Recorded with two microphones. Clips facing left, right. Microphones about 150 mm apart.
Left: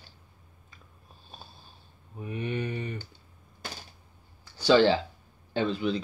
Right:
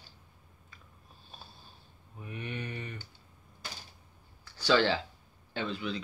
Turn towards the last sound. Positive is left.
turn(degrees=30)  # may be behind; listen again after turning